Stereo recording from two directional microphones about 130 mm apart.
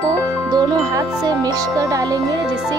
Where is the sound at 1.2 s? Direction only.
25° right (ahead or behind).